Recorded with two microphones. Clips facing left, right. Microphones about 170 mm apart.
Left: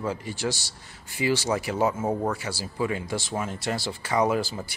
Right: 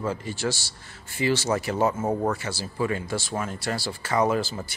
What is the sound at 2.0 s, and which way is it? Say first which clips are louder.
Speech: right 1 dB; 5° right (ahead or behind).